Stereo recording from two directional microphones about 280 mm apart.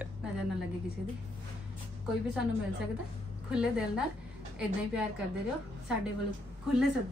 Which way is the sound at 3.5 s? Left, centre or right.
Centre.